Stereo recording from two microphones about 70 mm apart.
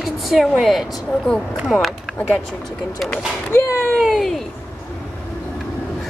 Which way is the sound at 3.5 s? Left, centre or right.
Left.